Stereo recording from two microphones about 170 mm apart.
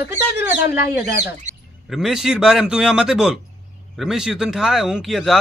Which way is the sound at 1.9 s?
Centre (ahead or behind).